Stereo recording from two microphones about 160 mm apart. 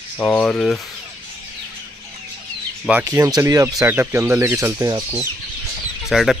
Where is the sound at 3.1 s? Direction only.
20° right (ahead or behind).